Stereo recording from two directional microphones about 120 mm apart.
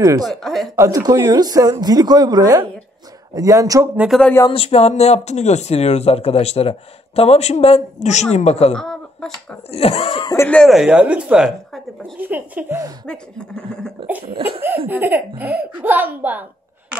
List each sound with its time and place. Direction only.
0.0 s speech: 30° right (ahead or behind)
0.3 s speech: centre (ahead or behind)
0.7 s speech: 30° right (ahead or behind)
3.9 s speech: 10° right (ahead or behind)
4.2 s speech: 15° left (ahead or behind)
4.5 s speech: 55° left (ahead or behind)
8.7 s speech: 5° left (ahead or behind)
9.7 s speech: 55° left (ahead or behind)
10.5 s speech: 5° left (ahead or behind)
10.8 s speech: 10° right (ahead or behind)
13.0 s speech: 5° left (ahead or behind)
14.9 s speech: 15° right (ahead or behind)